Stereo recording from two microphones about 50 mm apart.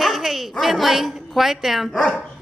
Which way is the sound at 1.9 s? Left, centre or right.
Centre.